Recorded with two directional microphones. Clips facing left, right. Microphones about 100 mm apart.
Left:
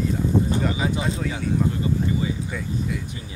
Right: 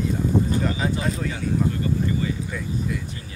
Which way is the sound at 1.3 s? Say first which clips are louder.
Even; 15° left (ahead or behind).